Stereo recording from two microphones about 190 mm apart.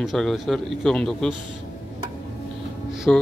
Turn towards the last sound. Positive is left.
turn(degrees=5)  # may be behind; listen again after turning